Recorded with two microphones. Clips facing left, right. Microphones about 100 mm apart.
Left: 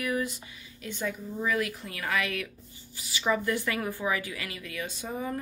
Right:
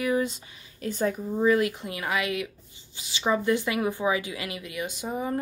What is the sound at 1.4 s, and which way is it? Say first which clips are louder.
Speech: right 8 dB; 30° right (ahead or behind).